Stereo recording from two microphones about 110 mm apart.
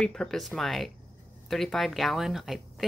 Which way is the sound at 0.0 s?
5° left (ahead or behind).